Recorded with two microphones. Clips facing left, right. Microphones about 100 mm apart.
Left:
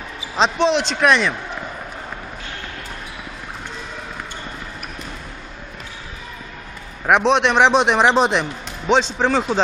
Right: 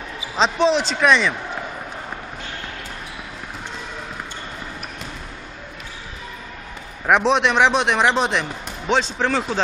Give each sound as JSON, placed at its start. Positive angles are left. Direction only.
{"t": 0.4, "sound": "a man's voice", "side_deg": 0}
{"t": 7.1, "sound": "a man's voice", "side_deg": 0}
{"t": 8.0, "sound": "speech", "side_deg": 30}
{"t": 8.3, "sound": "speech", "side_deg": 5}